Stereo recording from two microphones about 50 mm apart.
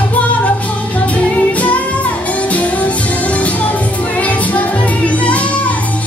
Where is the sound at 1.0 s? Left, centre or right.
Left.